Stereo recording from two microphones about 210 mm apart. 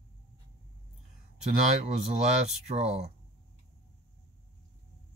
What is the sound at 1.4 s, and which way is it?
Speech, 35° right (ahead or behind).